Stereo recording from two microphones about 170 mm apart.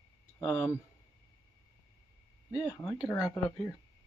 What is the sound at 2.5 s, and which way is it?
Speech, 15° left (ahead or behind).